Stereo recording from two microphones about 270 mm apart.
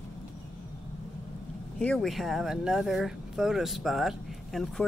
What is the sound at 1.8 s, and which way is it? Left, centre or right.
Speech, centre.